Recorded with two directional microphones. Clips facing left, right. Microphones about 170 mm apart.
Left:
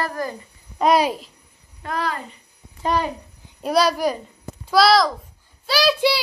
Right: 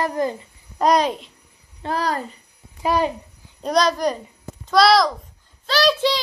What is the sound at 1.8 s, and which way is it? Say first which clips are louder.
Speech: right 3 dB; 35° right (ahead or behind).